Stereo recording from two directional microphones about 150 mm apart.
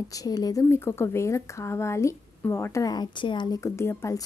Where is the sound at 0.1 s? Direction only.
25° left (ahead or behind).